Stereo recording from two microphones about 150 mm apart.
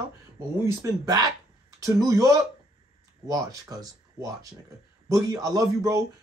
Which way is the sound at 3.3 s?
25° right (ahead or behind).